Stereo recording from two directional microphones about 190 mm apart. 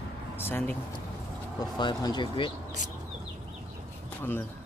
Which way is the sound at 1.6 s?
20° left (ahead or behind).